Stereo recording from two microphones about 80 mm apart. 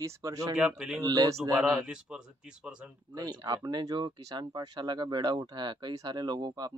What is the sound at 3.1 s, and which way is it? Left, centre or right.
Speech, right.